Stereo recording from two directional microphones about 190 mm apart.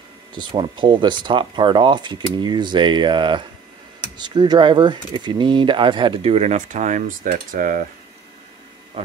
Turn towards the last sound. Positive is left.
turn(degrees=-45)  # may be behind; listen again after turning